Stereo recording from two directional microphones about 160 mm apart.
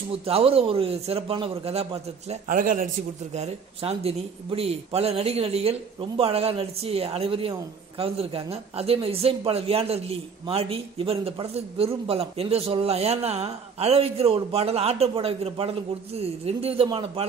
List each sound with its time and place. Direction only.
0.1 s speech: 40° right (ahead or behind)
2.4 s a man's voice: 55° right (ahead or behind)
3.3 s speech: 40° right (ahead or behind)